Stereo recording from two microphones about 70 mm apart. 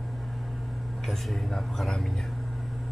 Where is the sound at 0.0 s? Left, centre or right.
Centre.